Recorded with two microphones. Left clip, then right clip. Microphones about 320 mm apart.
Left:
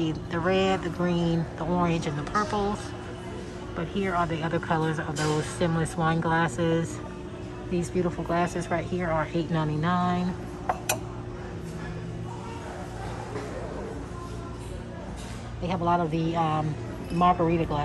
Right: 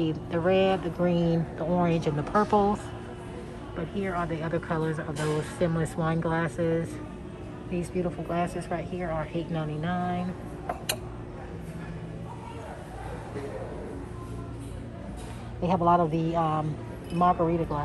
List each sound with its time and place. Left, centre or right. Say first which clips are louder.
0.0 s speech: right 1 dB; centre
3.9 s speech: left 4 dB; centre
15.6 s speech: right 3 dB; centre